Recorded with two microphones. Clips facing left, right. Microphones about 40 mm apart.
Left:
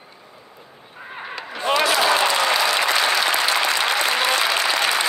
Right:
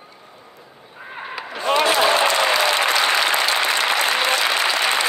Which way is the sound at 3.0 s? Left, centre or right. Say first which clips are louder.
Right 1 dB; right.